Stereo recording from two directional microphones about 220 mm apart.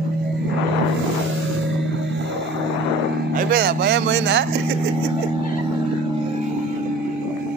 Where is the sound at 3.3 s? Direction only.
45° right (ahead or behind).